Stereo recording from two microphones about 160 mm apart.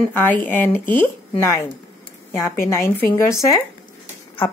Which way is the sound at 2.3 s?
15° left (ahead or behind).